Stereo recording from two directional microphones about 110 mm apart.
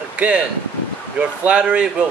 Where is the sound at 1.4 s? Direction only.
10° right (ahead or behind).